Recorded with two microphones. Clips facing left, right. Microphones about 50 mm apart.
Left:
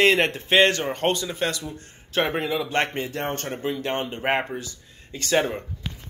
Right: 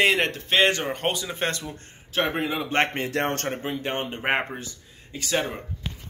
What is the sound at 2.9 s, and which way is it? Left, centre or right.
Speech, right.